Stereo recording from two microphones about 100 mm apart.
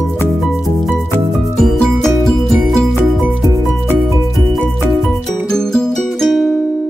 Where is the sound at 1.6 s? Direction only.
Centre (ahead or behind).